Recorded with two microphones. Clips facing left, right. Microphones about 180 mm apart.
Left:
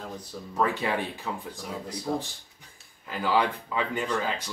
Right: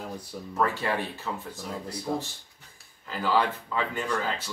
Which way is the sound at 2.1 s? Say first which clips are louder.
Left 1 dB; centre (ahead or behind).